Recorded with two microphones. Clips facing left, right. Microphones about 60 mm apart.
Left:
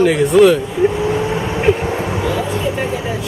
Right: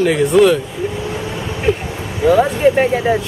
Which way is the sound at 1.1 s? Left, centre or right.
Left.